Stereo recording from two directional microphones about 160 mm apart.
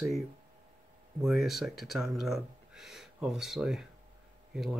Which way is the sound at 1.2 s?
Centre (ahead or behind).